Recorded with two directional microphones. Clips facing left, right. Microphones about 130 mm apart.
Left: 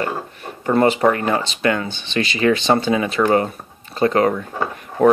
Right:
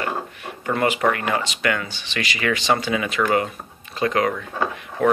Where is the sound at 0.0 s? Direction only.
35° left (ahead or behind).